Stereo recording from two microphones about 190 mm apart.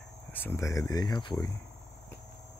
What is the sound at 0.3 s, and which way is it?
Speech, 10° left (ahead or behind).